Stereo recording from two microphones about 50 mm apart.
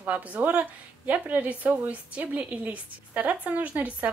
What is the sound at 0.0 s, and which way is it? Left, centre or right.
A woman's voice, right.